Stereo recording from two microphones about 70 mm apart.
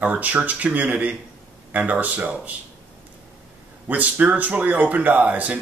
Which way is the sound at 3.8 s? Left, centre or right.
Right.